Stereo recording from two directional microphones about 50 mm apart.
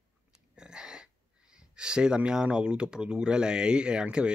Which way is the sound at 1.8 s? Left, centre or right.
Centre.